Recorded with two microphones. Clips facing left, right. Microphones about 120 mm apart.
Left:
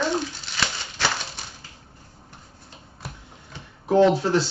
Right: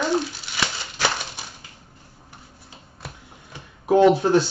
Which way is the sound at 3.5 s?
15° right (ahead or behind).